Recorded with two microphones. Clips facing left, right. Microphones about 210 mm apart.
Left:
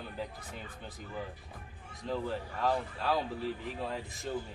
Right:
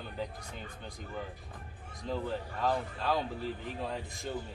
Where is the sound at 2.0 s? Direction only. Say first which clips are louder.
Even; centre (ahead or behind).